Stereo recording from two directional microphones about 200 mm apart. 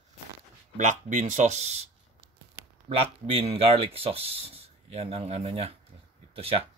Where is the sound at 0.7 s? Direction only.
40° right (ahead or behind).